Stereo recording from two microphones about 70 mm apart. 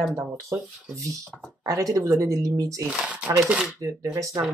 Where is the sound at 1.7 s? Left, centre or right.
Right.